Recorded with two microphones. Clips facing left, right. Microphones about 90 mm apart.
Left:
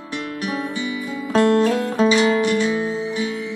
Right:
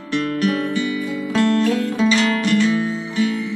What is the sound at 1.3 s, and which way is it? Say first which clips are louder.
Music: left 2 dB; 45° left (ahead or behind).